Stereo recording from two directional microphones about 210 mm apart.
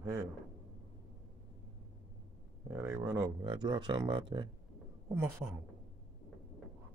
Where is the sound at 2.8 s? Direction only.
15° right (ahead or behind).